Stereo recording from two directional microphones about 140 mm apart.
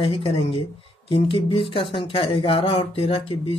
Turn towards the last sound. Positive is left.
turn(degrees=40)  # may be behind; listen again after turning